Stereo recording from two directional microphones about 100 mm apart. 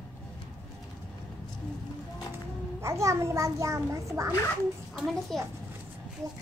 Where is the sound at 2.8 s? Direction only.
30° right (ahead or behind).